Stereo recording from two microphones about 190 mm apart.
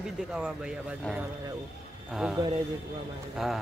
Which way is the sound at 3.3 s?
Centre (ahead or behind).